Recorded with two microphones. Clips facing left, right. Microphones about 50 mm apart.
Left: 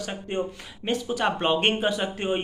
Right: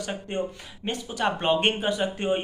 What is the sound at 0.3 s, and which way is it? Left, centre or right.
Speech, centre.